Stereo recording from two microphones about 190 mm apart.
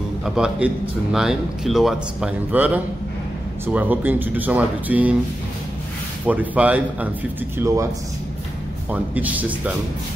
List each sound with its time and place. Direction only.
0.2 s a man's voice: 5° right (ahead or behind)
6.2 s speech: 10° right (ahead or behind)
8.9 s speech: 10° right (ahead or behind)